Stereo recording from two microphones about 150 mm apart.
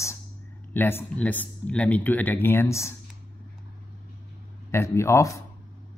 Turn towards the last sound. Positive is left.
turn(degrees=20)  # may be behind; listen again after turning